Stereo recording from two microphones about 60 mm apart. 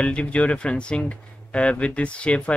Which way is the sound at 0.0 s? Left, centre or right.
Centre.